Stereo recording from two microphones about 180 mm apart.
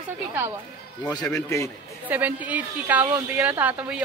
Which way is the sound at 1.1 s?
20° left (ahead or behind).